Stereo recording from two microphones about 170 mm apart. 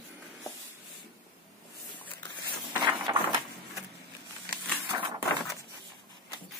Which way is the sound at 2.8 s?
25° right (ahead or behind).